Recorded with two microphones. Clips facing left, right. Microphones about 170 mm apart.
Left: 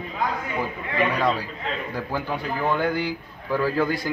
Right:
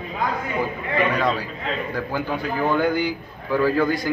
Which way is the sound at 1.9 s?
Centre (ahead or behind).